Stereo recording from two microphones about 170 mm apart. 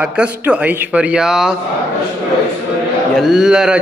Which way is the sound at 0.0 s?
5° right (ahead or behind).